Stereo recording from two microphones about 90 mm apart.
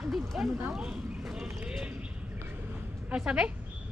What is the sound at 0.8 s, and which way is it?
Speech, 10° right (ahead or behind).